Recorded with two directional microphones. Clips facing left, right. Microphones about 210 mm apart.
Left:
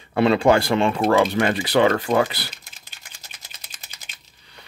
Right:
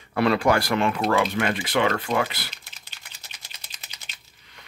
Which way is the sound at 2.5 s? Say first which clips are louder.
Left 1 dB; 45° left (ahead or behind).